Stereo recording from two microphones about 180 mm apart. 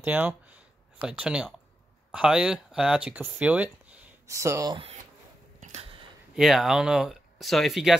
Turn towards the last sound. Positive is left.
turn(degrees=0)  # may be behind; listen again after turning